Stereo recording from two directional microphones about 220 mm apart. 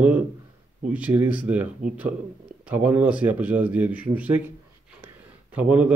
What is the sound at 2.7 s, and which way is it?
Speech, 5° right (ahead or behind).